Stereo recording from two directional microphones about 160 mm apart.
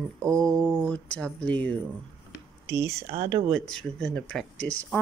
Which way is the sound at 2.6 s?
20° right (ahead or behind).